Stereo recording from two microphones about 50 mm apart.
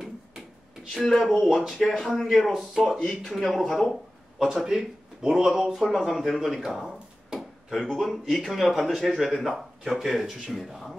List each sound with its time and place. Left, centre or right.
0.9 s speech: centre
4.6 s speech: centre
5.8 s speech: centre